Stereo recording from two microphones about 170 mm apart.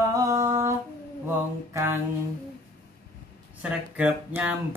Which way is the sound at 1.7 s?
15° right (ahead or behind).